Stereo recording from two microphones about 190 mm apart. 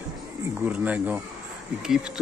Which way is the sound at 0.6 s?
10° right (ahead or behind).